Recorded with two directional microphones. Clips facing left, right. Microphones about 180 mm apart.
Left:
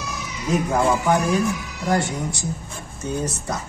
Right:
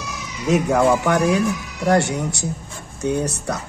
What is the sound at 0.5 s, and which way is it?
Speech, 80° right.